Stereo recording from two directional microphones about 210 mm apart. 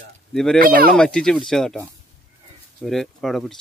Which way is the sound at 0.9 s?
5° left (ahead or behind).